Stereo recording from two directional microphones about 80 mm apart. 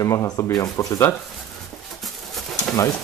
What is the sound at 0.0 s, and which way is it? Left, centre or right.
Speech, left.